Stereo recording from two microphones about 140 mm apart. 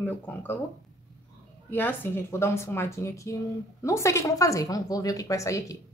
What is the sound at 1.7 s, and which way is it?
A woman's voice, 15° left (ahead or behind).